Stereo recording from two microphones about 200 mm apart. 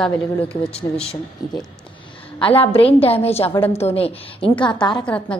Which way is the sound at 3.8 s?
30° left (ahead or behind).